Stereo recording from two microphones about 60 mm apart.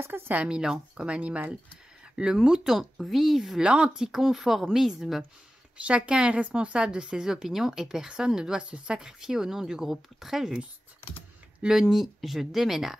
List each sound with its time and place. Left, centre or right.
0.0 s speech: right
0.3 s speech: right
2.4 s speech: centre
3.6 s speech: centre
5.8 s speech: centre
11.8 s speech: centre